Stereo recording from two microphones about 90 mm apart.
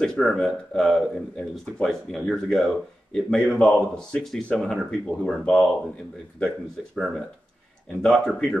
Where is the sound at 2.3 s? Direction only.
5° left (ahead or behind).